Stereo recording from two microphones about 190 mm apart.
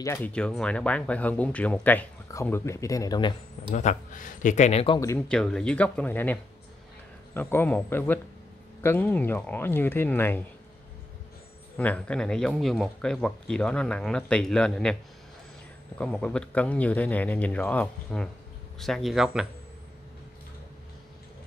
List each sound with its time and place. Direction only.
0.0 s speech: 10° left (ahead or behind)
3.7 s speech: 40° left (ahead or behind)
5.3 s speech: 5° left (ahead or behind)
11.7 s speech: 5° left (ahead or behind)
16.0 s speech: 5° left (ahead or behind)